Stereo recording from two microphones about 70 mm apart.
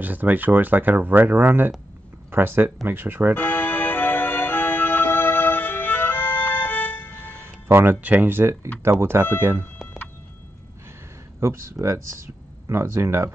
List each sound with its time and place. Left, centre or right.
0.0 s speech: right
3.3 s music: left
7.2 s music: right
9.0 s speech: right
11.3 s speech: right